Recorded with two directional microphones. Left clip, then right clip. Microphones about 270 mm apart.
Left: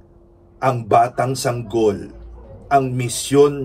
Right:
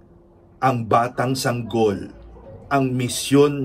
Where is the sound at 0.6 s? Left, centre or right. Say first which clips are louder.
Left 3 dB; centre.